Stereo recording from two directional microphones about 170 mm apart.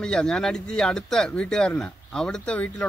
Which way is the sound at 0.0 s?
5° left (ahead or behind).